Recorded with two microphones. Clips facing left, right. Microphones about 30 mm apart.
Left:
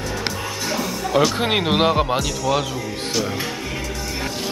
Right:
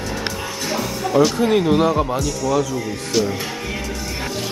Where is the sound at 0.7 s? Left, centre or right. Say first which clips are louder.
Right 2 dB; centre.